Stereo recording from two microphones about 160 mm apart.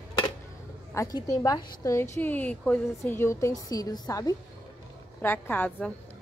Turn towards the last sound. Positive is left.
turn(degrees=10)  # may be behind; listen again after turning